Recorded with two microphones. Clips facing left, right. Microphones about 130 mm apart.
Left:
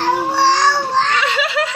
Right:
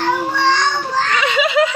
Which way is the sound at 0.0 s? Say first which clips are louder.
Left 2 dB; 35° left (ahead or behind).